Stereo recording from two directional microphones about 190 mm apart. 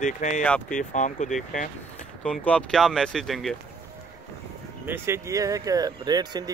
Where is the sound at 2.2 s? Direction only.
5° left (ahead or behind).